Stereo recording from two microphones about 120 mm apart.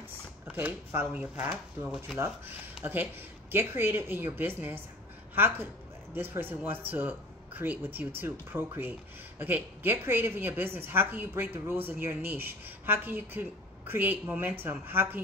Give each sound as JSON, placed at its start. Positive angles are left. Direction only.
{"t": 0.6, "sound": "a woman's voice", "side_deg": -15}